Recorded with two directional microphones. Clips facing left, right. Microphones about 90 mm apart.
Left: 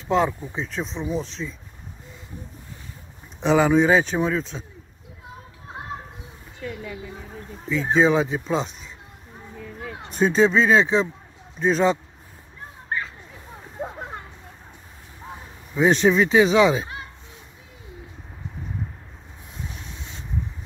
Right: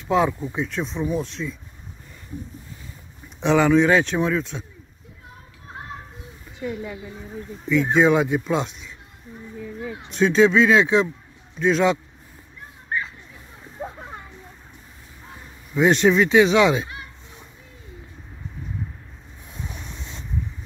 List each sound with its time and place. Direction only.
0.1 s speech: centre (ahead or behind)
3.3 s speech: 5° left (ahead or behind)
6.6 s speech: 20° right (ahead or behind)
7.7 s speech: centre (ahead or behind)
10.1 s speech: 5° left (ahead or behind)
15.7 s speech: centre (ahead or behind)